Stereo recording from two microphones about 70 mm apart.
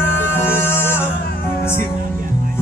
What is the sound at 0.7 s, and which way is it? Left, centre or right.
Music, left.